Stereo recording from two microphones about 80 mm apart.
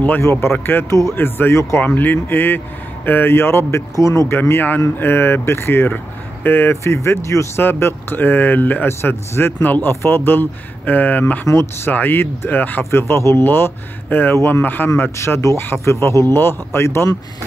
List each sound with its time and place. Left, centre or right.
0.2 s speech: left
3.9 s speech: left
4.3 s speech: left
11.4 s speech: left
13.0 s speech: left
15.1 s speech: left